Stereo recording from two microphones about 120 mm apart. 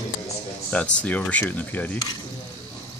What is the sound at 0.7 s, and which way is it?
Speech, 10° left (ahead or behind).